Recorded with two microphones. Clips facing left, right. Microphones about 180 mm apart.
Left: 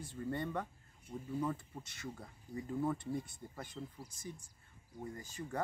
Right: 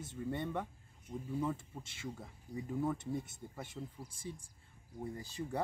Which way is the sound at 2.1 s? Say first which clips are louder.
Right 1 dB; 5° right (ahead or behind).